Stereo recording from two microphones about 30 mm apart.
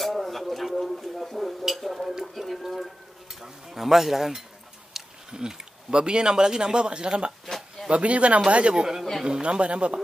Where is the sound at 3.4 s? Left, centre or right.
Centre.